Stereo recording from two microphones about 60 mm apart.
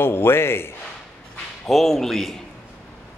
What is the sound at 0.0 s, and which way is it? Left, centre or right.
Speech, left.